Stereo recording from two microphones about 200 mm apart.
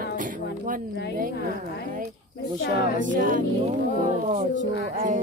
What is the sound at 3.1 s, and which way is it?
Music, 40° right (ahead or behind).